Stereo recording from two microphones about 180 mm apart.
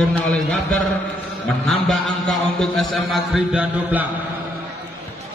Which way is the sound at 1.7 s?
Centre (ahead or behind).